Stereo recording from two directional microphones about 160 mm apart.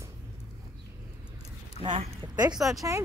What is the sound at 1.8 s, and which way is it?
Speech, 30° right (ahead or behind).